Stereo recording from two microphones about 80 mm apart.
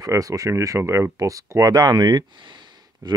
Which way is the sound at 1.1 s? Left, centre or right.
Right.